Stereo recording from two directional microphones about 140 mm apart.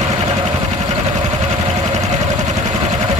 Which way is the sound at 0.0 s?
50° right (ahead or behind).